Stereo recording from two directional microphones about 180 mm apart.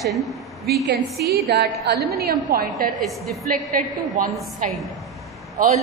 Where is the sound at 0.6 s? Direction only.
60° right (ahead or behind).